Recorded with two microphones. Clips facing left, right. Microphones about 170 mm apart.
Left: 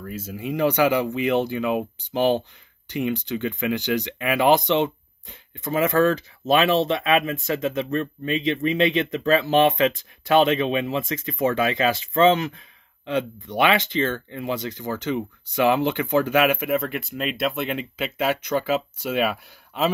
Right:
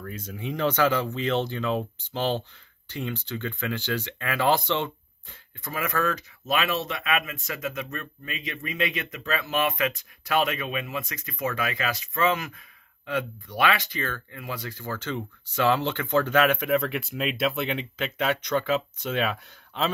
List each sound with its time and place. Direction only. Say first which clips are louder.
0.0 s speech: left 4 dB; 5° left (ahead or behind)